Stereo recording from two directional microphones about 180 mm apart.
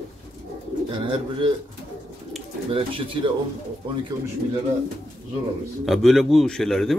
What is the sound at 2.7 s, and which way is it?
Speech, 30° right (ahead or behind).